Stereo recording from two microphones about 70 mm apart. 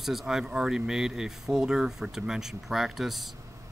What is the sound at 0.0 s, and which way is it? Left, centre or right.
Speech, centre.